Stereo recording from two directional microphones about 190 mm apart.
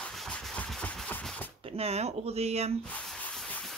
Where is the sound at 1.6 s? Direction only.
30° right (ahead or behind).